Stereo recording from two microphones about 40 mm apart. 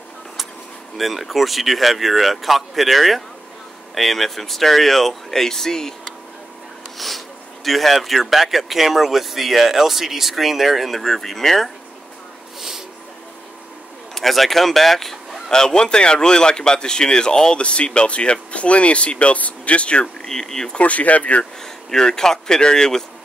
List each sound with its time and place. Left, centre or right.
0.9 s speech: centre
7.0 s speech: centre
12.5 s a sound: centre
14.1 s speech: centre; by 20.2 s left
20.2 s speech: centre
20.7 s speech: left
21.9 s speech: centre